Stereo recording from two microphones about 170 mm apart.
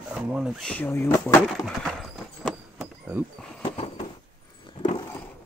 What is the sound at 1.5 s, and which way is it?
Horse, centre (ahead or behind).